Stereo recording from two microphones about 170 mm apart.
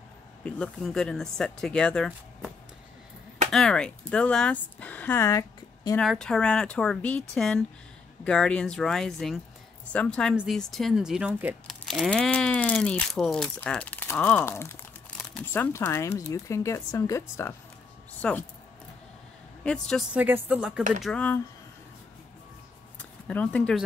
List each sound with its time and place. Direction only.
0.4 s speech: 5° left (ahead or behind)
3.5 s speech: 5° left (ahead or behind)
5.9 s speech: 5° left (ahead or behind)
19.6 s speech: 5° left (ahead or behind)
20.2 s speech: 10° right (ahead or behind)
21.0 s speech: 5° left (ahead or behind)
23.2 s speech: 10° left (ahead or behind)